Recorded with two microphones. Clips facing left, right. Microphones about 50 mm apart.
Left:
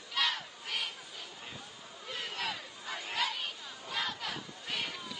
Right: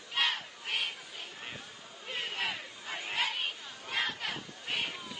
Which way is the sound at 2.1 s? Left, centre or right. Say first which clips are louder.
Right 2 dB; right.